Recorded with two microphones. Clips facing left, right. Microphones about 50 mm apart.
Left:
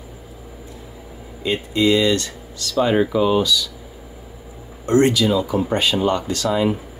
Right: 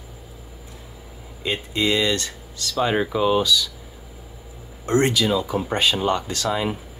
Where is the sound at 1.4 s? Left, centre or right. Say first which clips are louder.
Left 5 dB; right.